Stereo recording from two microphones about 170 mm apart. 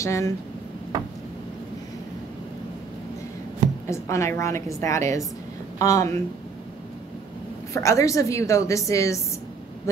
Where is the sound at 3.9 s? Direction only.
15° left (ahead or behind).